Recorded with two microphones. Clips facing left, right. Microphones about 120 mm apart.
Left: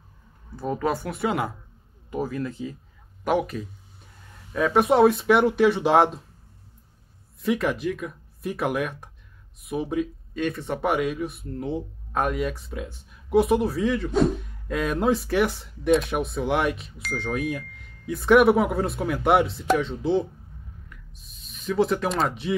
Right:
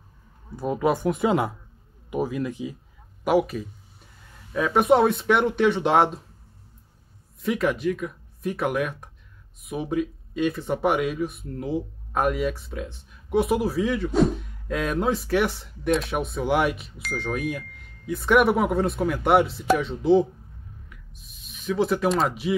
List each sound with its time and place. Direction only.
0.7 s speech: 10° right (ahead or behind)
7.4 s speech: centre (ahead or behind)
20.9 s owl: centre (ahead or behind)